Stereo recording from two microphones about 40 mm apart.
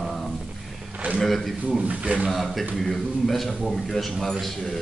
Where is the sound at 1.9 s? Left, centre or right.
Right.